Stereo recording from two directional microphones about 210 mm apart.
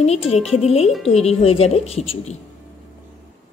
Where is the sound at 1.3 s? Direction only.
30° left (ahead or behind).